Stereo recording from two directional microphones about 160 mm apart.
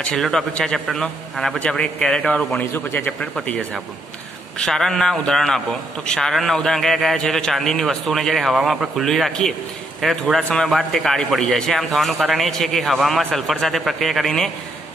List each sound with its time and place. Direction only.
0.0 s a man's voice: 5° left (ahead or behind)